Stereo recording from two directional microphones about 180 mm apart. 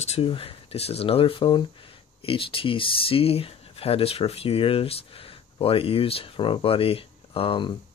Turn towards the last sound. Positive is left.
turn(degrees=30)  # may be behind; listen again after turning